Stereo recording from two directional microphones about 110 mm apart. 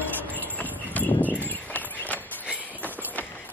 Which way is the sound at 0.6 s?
15° left (ahead or behind).